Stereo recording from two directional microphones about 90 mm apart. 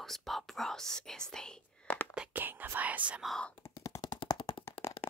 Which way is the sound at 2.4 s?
20° right (ahead or behind).